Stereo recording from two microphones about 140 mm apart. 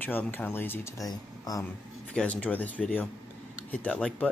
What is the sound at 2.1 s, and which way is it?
Speech, 10° left (ahead or behind).